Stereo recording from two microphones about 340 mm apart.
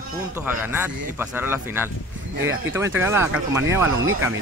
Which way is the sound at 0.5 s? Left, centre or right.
Centre.